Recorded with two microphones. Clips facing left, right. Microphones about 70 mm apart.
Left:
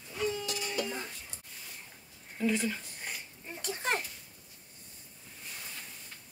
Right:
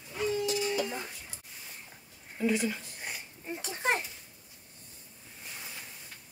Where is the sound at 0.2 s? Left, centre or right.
Centre.